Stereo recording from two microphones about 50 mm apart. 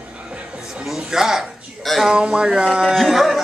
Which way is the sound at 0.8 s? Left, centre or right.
Centre.